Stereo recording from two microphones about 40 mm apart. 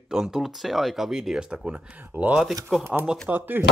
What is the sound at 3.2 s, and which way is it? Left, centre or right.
Speech, right.